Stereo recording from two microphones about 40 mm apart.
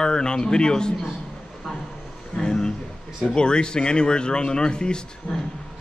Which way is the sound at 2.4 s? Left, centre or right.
Left.